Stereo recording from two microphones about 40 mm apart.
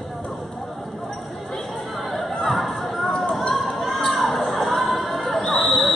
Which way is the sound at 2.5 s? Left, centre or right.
Centre.